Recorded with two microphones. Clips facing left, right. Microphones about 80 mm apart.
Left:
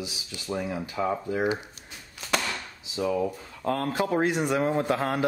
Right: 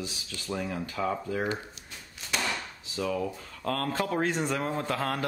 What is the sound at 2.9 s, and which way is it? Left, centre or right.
Speech, centre.